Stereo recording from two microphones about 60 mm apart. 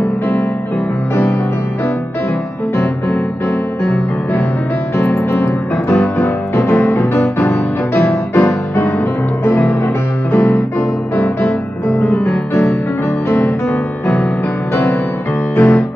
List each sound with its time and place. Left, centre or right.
4.9 s music: left
7.9 s music: left
10.3 s music: left
11.9 s music: left
15.5 s music: left